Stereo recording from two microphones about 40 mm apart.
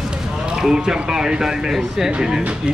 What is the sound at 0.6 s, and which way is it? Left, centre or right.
Speech, centre.